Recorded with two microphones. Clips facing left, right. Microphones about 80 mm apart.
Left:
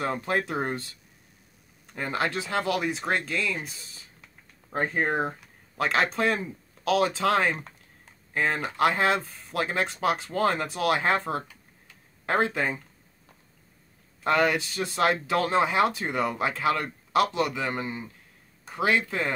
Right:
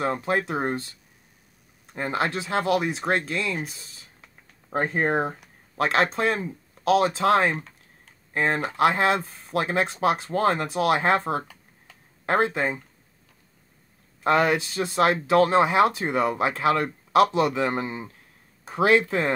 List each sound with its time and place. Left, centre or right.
0.0 s speech: right
2.0 s speech: right
14.2 s speech: right
19.0 s speech: right